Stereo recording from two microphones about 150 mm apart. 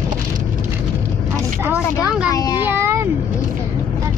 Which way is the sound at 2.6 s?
15° right (ahead or behind).